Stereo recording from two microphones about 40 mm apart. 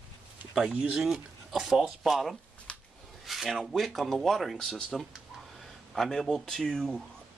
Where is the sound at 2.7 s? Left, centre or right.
Left.